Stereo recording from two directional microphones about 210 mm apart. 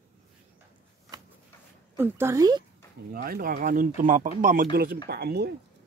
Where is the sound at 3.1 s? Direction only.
45° right (ahead or behind).